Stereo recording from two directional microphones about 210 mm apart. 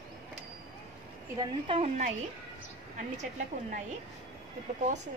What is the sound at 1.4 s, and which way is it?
Speech, 25° right (ahead or behind).